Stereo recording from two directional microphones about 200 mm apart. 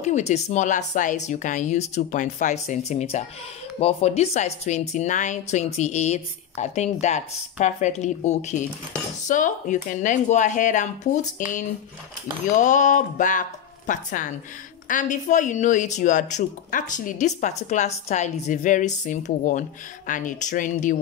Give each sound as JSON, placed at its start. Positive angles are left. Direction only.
{"t": 0.0, "sound": "a woman's voice", "side_deg": 35}